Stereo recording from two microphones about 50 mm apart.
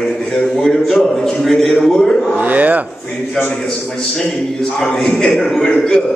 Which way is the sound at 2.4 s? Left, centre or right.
Right.